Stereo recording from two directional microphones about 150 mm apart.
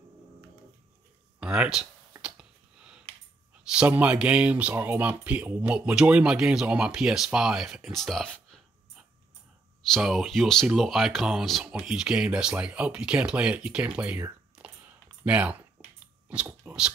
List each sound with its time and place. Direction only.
1.4 s speech: 5° right (ahead or behind)
2.2 s a sound: 5° right (ahead or behind)
3.6 s speech: 10° right (ahead or behind)